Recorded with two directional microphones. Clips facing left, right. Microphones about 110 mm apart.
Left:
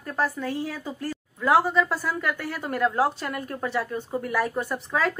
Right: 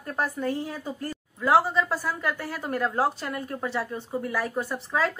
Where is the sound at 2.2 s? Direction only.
30° right (ahead or behind).